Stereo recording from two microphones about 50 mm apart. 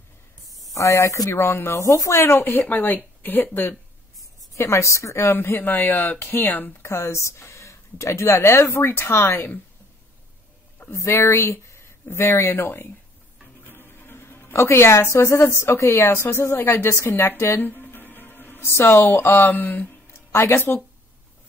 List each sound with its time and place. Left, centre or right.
0.7 s speech: left
2.3 s speech: left
3.2 s a sound: left
4.6 s a woman's voice: left
6.8 s a woman's voice: left
8.4 s speech: left
11.0 s speech: left
13.7 s music: left
14.5 s speech: left
17.6 s music: left
19.5 s speech: left
20.1 s a sound: left